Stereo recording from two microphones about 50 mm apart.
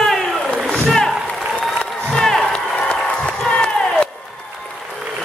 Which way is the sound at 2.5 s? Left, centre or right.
Left.